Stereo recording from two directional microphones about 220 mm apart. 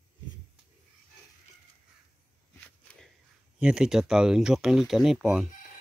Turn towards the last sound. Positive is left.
turn(degrees=0)  # may be behind; listen again after turning